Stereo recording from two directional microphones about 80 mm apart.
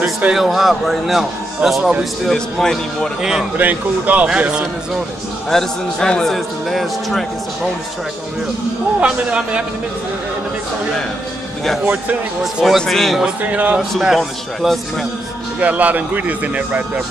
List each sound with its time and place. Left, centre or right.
0.0 s a man's voice: centre
3.2 s speech: centre
3.5 s a man's voice: right
5.5 s a man's voice: centre
9.0 s speech: centre
11.8 s speech: centre
12.6 s a man's voice: centre
13.4 s a man's voice: centre
13.7 s a man's voice: centre
15.6 s a man's voice: centre